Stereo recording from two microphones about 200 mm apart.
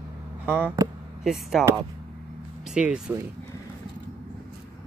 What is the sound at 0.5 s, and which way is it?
Speech, 10° right (ahead or behind).